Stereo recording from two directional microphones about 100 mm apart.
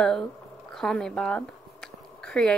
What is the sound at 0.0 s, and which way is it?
Speech, 5° left (ahead or behind).